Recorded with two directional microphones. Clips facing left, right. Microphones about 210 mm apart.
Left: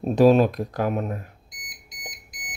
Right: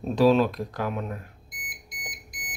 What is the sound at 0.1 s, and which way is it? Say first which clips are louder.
Speech: left 4 dB; 45° left (ahead or behind).